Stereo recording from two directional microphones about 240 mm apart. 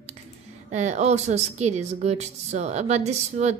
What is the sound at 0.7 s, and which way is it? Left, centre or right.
A woman's voice, right.